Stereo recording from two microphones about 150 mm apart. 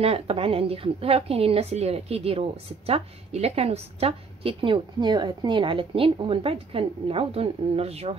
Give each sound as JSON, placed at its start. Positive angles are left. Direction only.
{"t": 0.0, "sound": "a woman's voice", "side_deg": -40}